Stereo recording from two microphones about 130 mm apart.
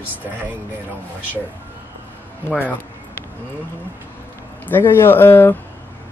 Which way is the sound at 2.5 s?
15° left (ahead or behind).